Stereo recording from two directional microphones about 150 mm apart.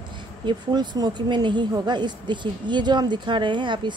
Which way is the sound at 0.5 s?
30° right (ahead or behind).